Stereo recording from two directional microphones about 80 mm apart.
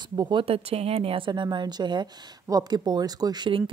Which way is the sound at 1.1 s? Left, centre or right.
Right.